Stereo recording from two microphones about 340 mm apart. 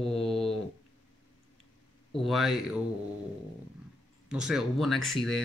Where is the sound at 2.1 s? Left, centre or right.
Centre.